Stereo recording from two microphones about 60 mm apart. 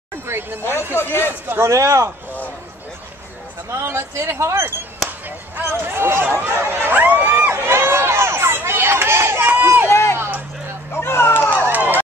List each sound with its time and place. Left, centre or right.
0.3 s speech: right
0.9 s speech: left
1.5 s speech: right
3.7 s speech: right
5.6 s speech: right
7.2 s run: right
9.8 s a sound: left
10.1 s a sound: right
10.9 s a sound: left